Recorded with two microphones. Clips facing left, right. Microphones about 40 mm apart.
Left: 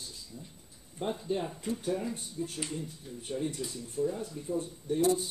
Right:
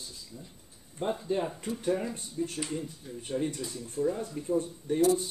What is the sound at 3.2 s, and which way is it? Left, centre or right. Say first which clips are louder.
Speech: right 2 dB; right.